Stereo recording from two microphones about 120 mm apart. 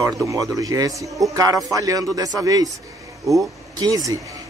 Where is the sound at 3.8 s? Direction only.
30° right (ahead or behind).